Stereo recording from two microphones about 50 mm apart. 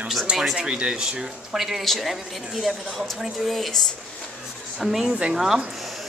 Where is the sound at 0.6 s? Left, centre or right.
Right; by 3.8 s centre.